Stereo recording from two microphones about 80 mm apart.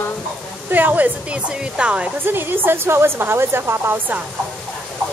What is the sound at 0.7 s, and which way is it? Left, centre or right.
Speech, right.